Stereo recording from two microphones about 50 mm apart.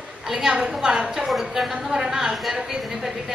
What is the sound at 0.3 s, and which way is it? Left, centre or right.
A woman's voice, centre.